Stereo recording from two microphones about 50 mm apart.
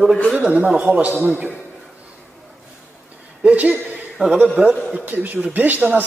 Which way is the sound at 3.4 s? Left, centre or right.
Right.